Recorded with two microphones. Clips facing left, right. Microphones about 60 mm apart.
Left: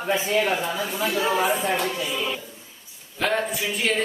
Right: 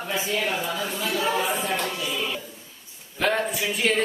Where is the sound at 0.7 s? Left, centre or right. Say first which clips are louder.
Left 2 dB; centre.